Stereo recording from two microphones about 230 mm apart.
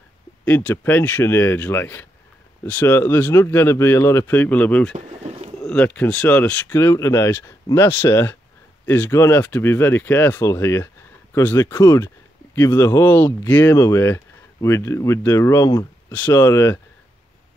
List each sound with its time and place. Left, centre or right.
0.5 s speech: centre
4.9 s pigeon: right
5.6 s speech: centre